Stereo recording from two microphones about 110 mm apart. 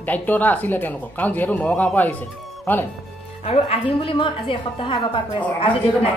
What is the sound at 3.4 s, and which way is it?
A woman's voice, 60° left (ahead or behind).